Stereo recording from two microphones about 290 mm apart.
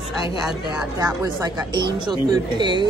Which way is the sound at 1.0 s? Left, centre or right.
Centre.